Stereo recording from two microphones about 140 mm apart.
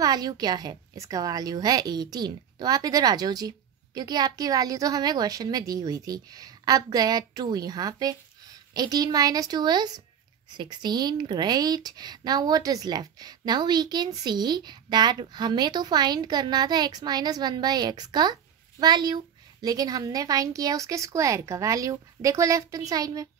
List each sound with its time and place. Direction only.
0.0 s a woman's voice: 25° right (ahead or behind)